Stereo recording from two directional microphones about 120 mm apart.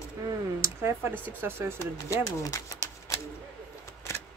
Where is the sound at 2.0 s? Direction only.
25° left (ahead or behind).